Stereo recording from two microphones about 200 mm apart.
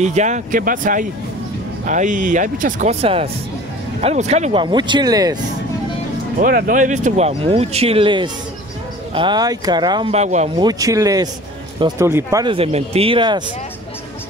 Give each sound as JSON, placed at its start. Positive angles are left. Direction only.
{"t": 0.0, "sound": "speech", "side_deg": -35}
{"t": 6.4, "sound": "speech", "side_deg": -45}
{"t": 10.6, "sound": "speech", "side_deg": -20}
{"t": 12.5, "sound": "speech", "side_deg": -30}